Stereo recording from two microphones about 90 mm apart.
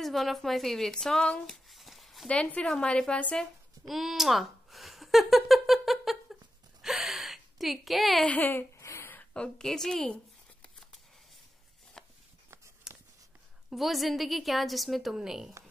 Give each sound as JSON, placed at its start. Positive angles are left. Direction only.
{"t": 0.0, "sound": "speech", "side_deg": 0}
{"t": 2.2, "sound": "a woman's voice", "side_deg": 10}
{"t": 3.8, "sound": "speech", "side_deg": -5}
{"t": 6.8, "sound": "a sound", "side_deg": -5}
{"t": 8.3, "sound": "speech", "side_deg": 20}
{"t": 8.7, "sound": "a sound", "side_deg": 35}
{"t": 13.7, "sound": "a woman's voice", "side_deg": 0}